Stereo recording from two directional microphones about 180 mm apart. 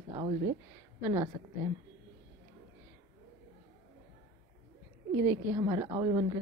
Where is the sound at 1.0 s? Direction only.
15° right (ahead or behind).